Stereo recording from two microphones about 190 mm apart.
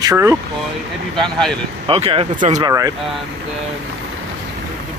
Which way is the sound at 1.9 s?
30° right (ahead or behind).